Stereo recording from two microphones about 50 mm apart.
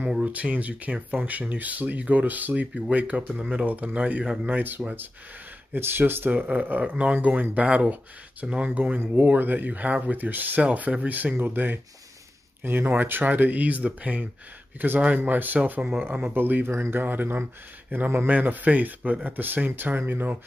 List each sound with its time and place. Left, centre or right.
0.2 s speech: right
9.0 s speech: right
9.3 s speech: right
12.6 s speech: right
12.9 s speech: right
18.3 s speech: right